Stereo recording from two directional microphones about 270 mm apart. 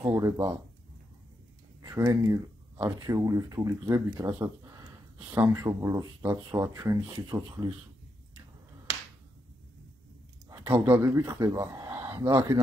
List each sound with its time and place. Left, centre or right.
0.0 s speech: centre
1.8 s speech: centre
10.5 s speech: centre